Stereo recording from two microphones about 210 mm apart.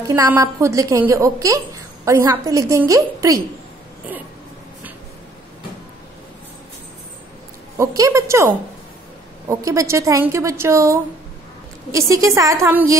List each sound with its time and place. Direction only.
0.0 s a woman's voice: 15° right (ahead or behind)
7.7 s a woman's voice: 15° right (ahead or behind)
9.5 s a woman's voice: 15° right (ahead or behind)